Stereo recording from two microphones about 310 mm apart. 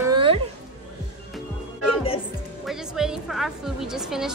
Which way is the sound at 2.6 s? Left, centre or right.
Centre.